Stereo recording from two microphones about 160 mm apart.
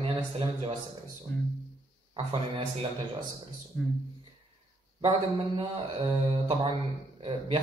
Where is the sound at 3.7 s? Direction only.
5° left (ahead or behind).